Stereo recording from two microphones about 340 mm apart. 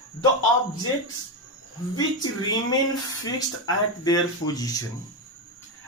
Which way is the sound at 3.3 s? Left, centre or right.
Centre.